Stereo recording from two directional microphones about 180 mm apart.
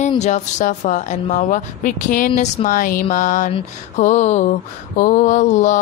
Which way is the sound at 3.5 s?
40° left (ahead or behind).